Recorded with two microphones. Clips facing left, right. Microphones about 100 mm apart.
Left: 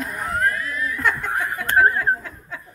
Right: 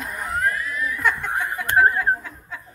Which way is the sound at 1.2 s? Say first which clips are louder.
Left 1 dB; 15° right (ahead or behind).